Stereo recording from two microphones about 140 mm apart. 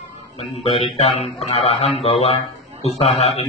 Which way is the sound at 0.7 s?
45° left (ahead or behind).